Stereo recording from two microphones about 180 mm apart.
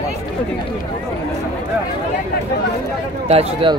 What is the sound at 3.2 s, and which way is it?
Speech, 30° right (ahead or behind).